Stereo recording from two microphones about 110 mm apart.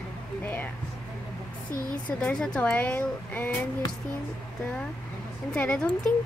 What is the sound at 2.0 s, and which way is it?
Speech, 10° left (ahead or behind).